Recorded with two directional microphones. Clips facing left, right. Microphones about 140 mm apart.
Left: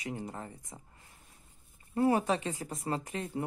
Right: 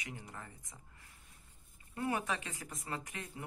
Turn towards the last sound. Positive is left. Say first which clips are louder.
# left 9 dB
turn(degrees=35)  # may be behind; listen again after turning